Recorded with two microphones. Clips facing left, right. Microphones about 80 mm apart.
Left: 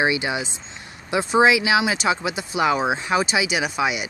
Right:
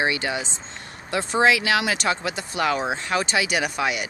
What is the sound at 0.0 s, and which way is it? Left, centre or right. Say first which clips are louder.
Speech: left 2 dB; centre.